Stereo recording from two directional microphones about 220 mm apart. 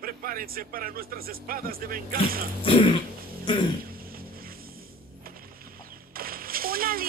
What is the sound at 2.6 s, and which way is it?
Throat clearing, 20° left (ahead or behind).